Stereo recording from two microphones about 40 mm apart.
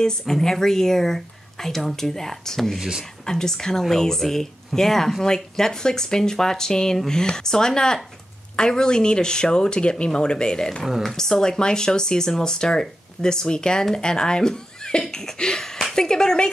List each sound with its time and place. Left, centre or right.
0.3 s speech: centre
2.8 s speech: centre
3.3 s speech: centre